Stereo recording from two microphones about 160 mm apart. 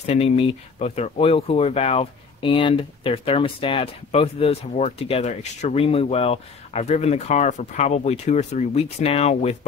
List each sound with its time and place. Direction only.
0.0 s speech: 40° left (ahead or behind)